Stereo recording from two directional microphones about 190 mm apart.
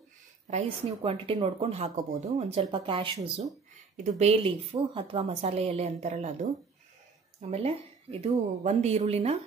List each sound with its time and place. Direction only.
0.5 s a woman's voice: 30° right (ahead or behind)
3.9 s a woman's voice: 35° right (ahead or behind)